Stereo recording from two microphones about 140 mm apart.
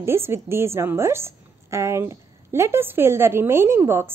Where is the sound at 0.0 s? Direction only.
20° right (ahead or behind).